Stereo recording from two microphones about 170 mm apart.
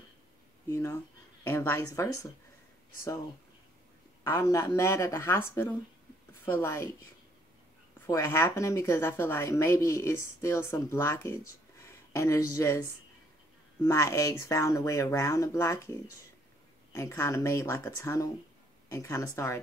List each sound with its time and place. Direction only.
0.7 s a woman's voice: 15° left (ahead or behind)
4.2 s speech: 20° left (ahead or behind)
8.1 s speech: 15° left (ahead or behind)
13.8 s speech: 20° left (ahead or behind)
16.9 s speech: 20° left (ahead or behind)